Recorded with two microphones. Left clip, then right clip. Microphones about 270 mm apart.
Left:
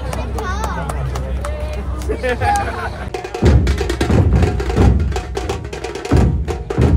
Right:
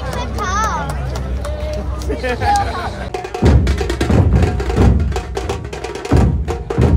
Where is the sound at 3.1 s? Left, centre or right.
Centre.